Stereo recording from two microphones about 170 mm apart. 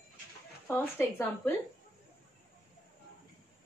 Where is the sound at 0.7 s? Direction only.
15° left (ahead or behind).